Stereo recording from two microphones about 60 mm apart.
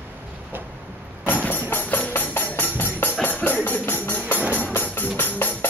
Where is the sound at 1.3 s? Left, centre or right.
Left.